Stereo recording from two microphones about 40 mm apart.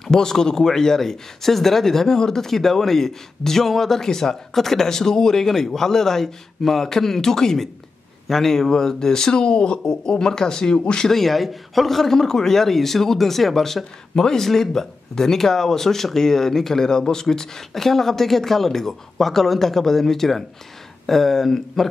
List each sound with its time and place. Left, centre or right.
0.1 s speech: centre
11.1 s a man's voice: centre